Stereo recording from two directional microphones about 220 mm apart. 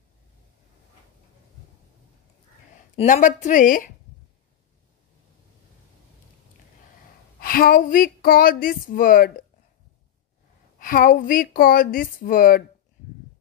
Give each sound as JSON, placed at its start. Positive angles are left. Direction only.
{"t": 3.0, "sound": "speech", "side_deg": 35}
{"t": 7.3, "sound": "speech", "side_deg": 40}
{"t": 10.8, "sound": "speech", "side_deg": 40}